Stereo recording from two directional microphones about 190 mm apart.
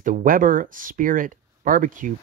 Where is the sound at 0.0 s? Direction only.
45° right (ahead or behind).